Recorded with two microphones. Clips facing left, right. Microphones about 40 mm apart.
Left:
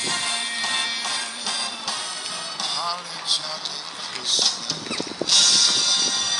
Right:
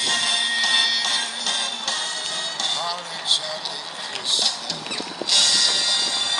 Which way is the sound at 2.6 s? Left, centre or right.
Right.